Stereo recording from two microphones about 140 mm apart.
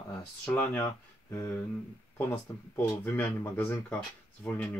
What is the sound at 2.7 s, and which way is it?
Speech, 15° left (ahead or behind).